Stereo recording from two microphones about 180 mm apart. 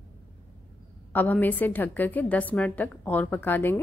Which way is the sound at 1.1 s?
10° left (ahead or behind).